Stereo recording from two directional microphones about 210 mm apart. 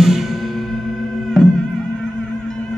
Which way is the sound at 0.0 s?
Centre (ahead or behind).